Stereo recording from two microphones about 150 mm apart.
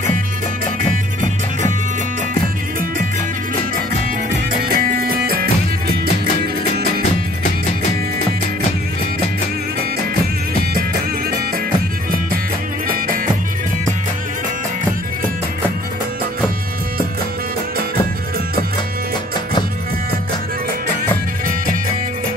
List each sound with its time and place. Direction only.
4.6 s music: 80° right
10.7 s music: 80° right
12.8 s music: 70° right (ahead or behind)